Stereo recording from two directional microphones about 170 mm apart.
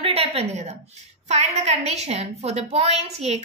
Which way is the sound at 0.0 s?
35° right (ahead or behind).